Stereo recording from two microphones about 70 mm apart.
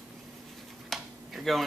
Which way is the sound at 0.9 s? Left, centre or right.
Centre.